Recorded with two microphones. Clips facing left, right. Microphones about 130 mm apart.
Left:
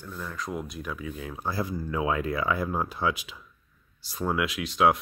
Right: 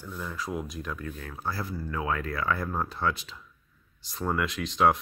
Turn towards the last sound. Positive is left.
turn(degrees=5)  # may be behind; listen again after turning